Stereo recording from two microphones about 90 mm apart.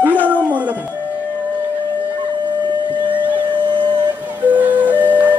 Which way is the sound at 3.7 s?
65° right (ahead or behind).